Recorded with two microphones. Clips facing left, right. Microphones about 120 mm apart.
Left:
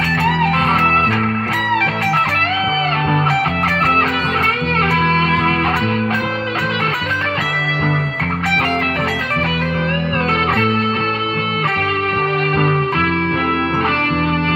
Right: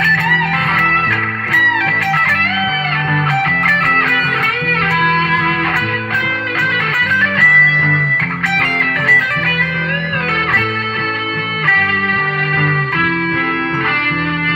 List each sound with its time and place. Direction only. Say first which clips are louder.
7.3 s music: right 4 dB; 30° left (ahead or behind)